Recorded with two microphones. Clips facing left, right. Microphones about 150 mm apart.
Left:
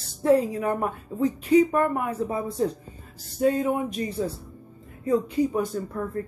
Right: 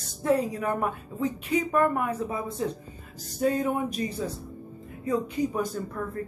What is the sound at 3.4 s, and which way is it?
Speech, 25° left (ahead or behind).